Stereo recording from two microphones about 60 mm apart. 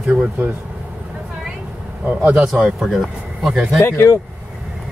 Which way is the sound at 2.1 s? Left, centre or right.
Right.